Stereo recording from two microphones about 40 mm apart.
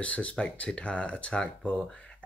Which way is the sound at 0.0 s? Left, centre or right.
Left.